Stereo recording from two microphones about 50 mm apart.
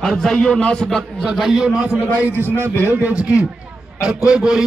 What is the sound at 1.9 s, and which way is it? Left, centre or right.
Speech, right.